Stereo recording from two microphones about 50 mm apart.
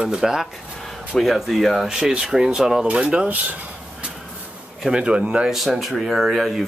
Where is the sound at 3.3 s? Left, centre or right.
Right.